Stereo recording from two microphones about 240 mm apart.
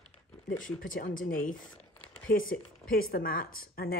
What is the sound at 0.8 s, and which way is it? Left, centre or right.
Speech, left.